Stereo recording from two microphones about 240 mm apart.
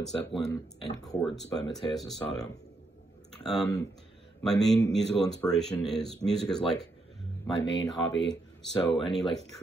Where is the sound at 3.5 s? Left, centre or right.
Centre.